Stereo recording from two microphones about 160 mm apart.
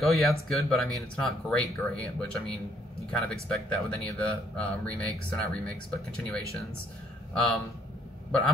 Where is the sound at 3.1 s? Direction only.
5° left (ahead or behind).